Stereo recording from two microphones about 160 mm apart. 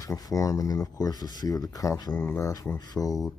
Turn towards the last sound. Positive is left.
turn(degrees=20)  # may be behind; listen again after turning